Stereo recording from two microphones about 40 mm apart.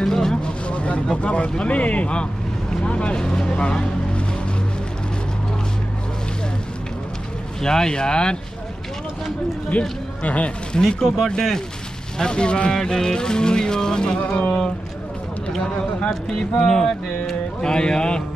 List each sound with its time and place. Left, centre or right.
0.0 s vehicle: centre
0.7 s vehicle: left
1.1 s speech: left
3.2 s speech: centre
3.5 s speech: left
7.6 s speech: centre
9.7 s speech: left
10.8 s speech: centre
12.2 s speech: left
14.2 s speech: left
16.1 s speech: centre